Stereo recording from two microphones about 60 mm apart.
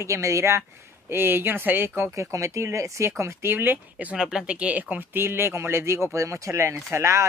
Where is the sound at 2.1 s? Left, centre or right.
Right.